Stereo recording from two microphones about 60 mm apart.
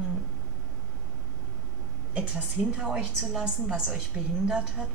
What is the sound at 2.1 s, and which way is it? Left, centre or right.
Speech, centre.